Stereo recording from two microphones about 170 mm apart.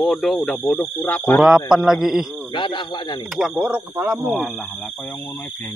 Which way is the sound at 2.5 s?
25° left (ahead or behind).